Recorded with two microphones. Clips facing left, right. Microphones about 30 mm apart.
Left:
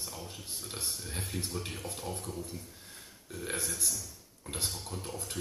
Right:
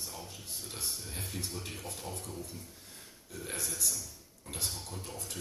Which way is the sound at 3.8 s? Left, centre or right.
Centre.